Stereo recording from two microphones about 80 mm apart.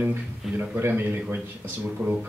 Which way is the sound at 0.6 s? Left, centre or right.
Right.